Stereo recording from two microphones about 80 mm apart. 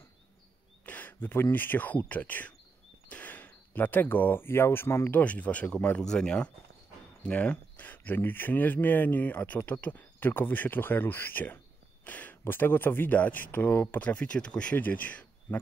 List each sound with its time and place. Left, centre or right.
0.8 s speech: left
5.1 s speech: centre